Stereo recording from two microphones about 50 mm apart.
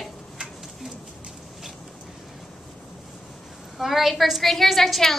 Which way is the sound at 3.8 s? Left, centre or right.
Centre.